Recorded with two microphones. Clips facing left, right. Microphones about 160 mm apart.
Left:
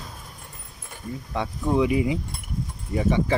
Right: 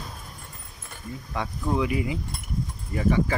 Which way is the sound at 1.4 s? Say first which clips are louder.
Left 4 dB; 20° left (ahead or behind).